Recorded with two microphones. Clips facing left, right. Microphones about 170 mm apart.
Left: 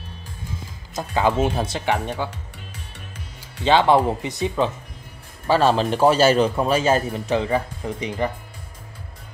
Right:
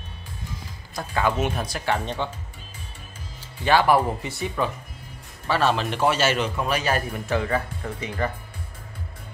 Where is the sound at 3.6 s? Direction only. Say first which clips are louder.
Left 3 dB; 20° left (ahead or behind).